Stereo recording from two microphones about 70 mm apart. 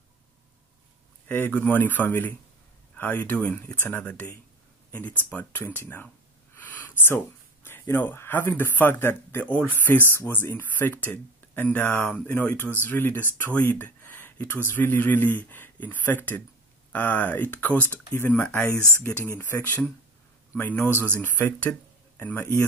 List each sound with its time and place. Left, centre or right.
1.3 s speech: left
6.5 s a sound: left
7.6 s a man's voice: left